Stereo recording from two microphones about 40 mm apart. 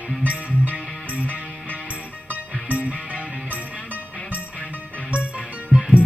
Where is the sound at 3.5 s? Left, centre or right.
Right.